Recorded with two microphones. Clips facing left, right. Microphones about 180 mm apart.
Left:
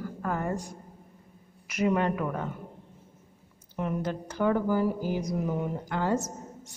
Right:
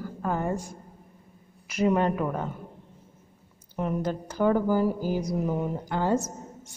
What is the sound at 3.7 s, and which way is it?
A woman's voice, 35° right (ahead or behind).